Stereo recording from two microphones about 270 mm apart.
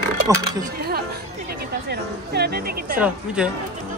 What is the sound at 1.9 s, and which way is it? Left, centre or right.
Speech, right.